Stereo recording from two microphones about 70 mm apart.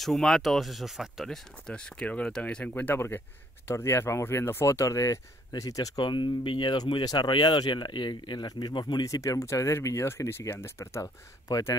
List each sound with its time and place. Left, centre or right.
0.0 s speech: centre
1.7 s speech: centre
3.6 s speech: left
9.0 s speech: left